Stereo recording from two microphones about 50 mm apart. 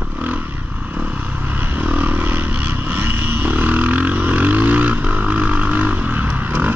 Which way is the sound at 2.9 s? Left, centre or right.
Right.